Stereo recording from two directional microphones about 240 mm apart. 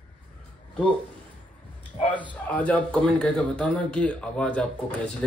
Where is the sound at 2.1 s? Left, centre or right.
Centre.